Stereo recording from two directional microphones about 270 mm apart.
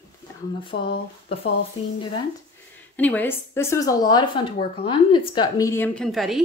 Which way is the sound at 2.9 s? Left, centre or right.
Centre.